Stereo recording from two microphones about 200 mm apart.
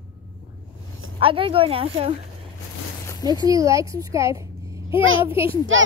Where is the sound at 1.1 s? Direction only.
25° right (ahead or behind).